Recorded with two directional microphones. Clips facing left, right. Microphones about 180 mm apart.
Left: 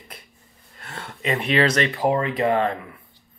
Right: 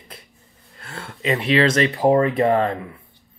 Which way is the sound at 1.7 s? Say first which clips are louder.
Right 4 dB; 30° right (ahead or behind).